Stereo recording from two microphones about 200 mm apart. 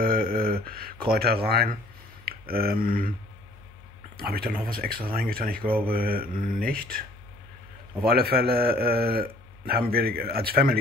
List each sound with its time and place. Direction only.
0.0 s a sound: 45° right (ahead or behind)
0.7 s speech: 50° right (ahead or behind)
4.2 s a man's voice: 50° right (ahead or behind)